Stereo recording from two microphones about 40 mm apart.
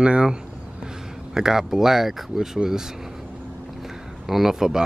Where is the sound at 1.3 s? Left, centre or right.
Centre.